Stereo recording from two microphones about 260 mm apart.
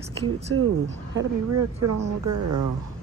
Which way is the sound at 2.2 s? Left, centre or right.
Right.